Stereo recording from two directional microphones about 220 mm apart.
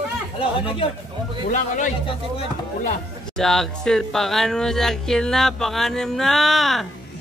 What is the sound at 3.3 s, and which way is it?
Speech, centre (ahead or behind).